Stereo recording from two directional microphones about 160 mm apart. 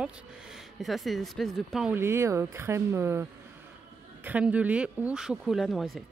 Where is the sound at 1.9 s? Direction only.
15° right (ahead or behind); by 6.0 s centre (ahead or behind).